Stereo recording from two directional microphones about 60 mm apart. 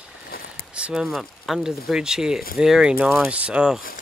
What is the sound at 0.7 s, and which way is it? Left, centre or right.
Speech, centre.